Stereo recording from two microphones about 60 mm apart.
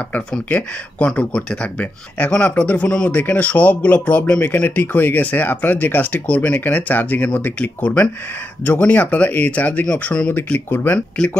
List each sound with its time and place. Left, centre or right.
0.5 s speech: left
3.1 s speech: left